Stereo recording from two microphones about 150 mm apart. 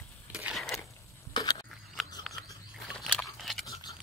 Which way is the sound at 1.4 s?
25° left (ahead or behind).